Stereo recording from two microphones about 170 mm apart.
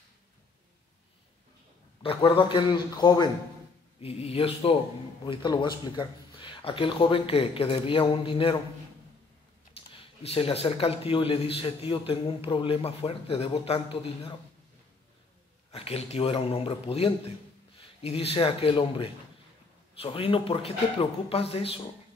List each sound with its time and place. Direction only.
2.0 s a man's voice: 30° left (ahead or behind)
9.8 s a man's voice: 35° left (ahead or behind)
15.7 s speech: 35° left (ahead or behind)